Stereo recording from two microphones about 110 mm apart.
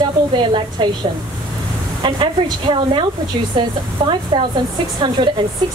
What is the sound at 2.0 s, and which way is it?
A woman's voice, 45° right (ahead or behind).